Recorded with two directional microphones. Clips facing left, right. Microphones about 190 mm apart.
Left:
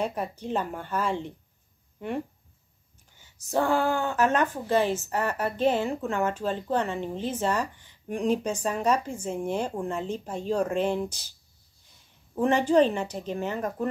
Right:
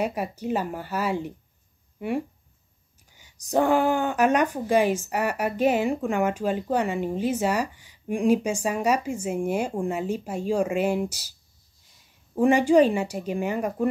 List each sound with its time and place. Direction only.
0.0 s speech: 10° right (ahead or behind)
12.4 s speech: 10° right (ahead or behind)